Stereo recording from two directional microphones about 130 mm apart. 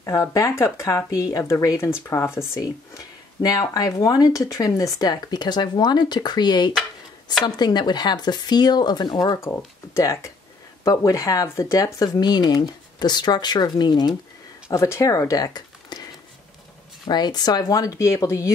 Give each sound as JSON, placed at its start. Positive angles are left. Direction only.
{"t": 0.0, "sound": "speech", "side_deg": 25}
{"t": 14.7, "sound": "speech", "side_deg": 20}
{"t": 17.1, "sound": "speech", "side_deg": 30}